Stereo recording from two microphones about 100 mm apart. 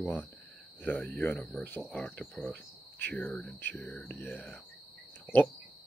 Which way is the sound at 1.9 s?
10° left (ahead or behind).